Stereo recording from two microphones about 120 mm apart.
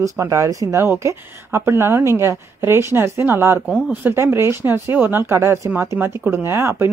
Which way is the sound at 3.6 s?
15° left (ahead or behind).